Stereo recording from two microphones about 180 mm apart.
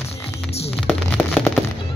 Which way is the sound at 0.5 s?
35° left (ahead or behind).